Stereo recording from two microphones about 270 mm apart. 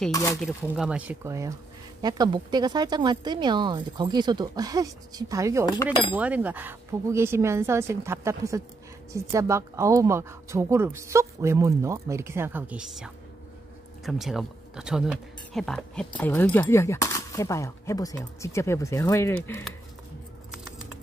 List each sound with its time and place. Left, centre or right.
0.0 s speech: centre
0.5 s a woman's voice: centre